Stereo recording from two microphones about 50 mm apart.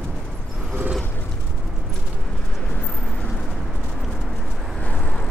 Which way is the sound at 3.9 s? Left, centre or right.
Centre.